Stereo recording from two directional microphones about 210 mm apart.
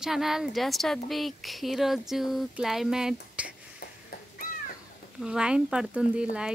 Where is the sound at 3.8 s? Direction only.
50° left (ahead or behind).